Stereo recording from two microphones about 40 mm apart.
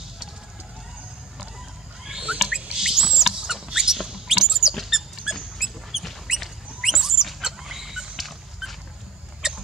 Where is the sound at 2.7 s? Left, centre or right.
Centre.